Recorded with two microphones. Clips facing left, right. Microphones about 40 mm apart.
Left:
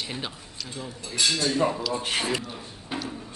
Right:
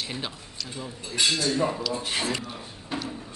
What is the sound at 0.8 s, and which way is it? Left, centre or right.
Speech, right.